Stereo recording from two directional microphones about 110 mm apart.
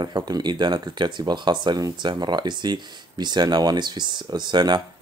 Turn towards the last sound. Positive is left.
turn(degrees=-40)  # may be behind; listen again after turning